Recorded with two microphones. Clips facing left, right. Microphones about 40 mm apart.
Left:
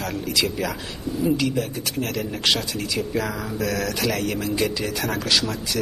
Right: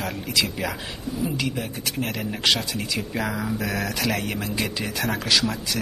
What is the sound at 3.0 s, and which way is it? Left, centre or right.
Speech, centre.